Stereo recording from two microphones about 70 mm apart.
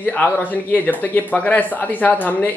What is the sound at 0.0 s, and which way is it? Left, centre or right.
Speech, left.